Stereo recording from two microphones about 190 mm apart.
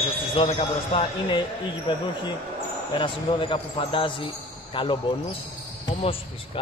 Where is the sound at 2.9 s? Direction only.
25° left (ahead or behind).